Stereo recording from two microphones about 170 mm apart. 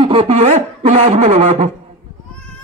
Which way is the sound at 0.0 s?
35° right (ahead or behind).